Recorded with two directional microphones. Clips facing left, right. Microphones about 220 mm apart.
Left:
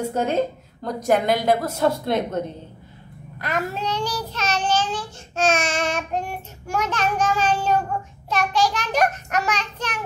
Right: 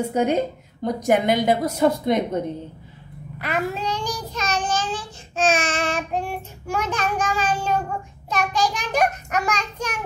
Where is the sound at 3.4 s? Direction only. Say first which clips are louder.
Right 1 dB; 10° right (ahead or behind).